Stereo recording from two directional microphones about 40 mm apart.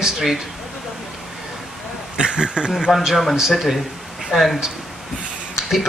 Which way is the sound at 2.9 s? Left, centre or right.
Centre.